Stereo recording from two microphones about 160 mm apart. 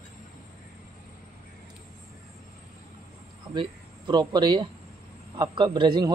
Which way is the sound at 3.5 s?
30° right (ahead or behind).